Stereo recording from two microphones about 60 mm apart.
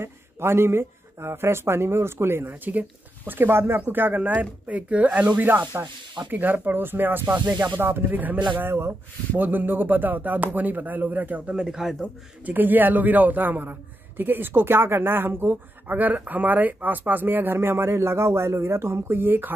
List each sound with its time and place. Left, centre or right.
0.0 s speech: right
2.5 s speech: right
5.4 s a man's voice: right
8.5 s a man's voice: right; by 12.0 s centre
12.4 s a man's voice: right